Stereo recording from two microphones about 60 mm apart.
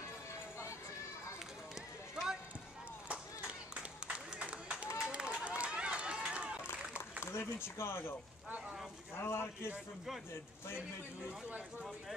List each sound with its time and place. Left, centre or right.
1.8 s run: centre
3.1 s a sound: right
4.9 s run: centre
7.2 s speech: left
8.5 s a sound: right
9.1 s a man's voice: left